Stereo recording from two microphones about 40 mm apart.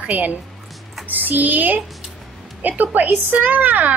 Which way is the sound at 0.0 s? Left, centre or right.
Right.